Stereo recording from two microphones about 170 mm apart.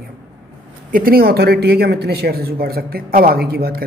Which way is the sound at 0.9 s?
60° right (ahead or behind).